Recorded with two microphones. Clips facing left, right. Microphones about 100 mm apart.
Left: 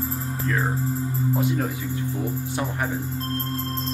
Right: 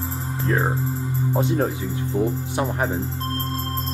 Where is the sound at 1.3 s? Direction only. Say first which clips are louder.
Right 4 dB; 30° right (ahead or behind).